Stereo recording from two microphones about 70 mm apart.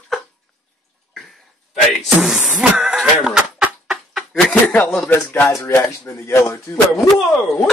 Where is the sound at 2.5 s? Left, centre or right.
Centre.